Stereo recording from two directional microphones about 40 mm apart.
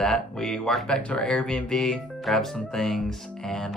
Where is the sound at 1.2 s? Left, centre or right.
Centre.